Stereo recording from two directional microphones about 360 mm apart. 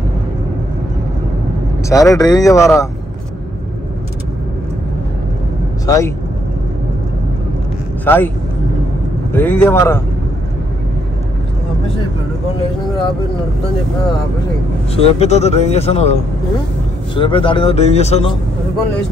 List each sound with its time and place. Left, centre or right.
1.9 s speech: centre
5.9 s speech: centre
8.0 s a man's voice: centre
9.3 s speech: centre
15.0 s speech: centre